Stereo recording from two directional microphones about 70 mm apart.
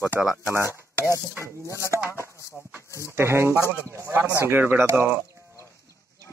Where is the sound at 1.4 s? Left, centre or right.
Left.